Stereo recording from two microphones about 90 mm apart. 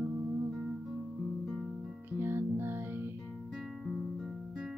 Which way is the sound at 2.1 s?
25° right (ahead or behind).